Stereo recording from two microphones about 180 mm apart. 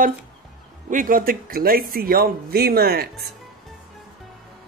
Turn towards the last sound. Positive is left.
turn(degrees=-60)  # may be behind; listen again after turning